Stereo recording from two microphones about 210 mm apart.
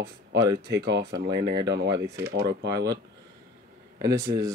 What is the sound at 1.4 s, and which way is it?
Speech, 20° right (ahead or behind).